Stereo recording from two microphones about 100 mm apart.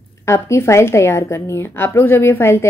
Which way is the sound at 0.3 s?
30° left (ahead or behind).